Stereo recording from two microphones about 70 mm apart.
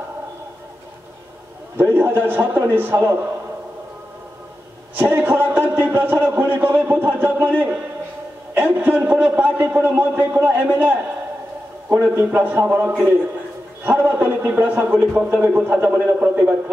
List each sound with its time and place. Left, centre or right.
1.8 s a man's voice: right
4.9 s a man's voice: right